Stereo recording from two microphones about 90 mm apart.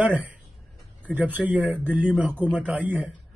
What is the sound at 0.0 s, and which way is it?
A man's voice, 20° right (ahead or behind).